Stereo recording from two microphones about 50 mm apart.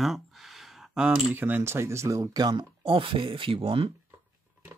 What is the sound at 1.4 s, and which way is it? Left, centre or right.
Speech, right.